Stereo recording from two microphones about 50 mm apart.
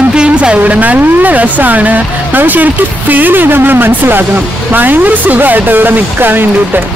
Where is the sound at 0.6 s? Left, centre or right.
Right.